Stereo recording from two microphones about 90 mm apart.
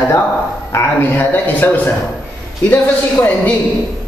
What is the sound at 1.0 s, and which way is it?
Speech, 20° left (ahead or behind).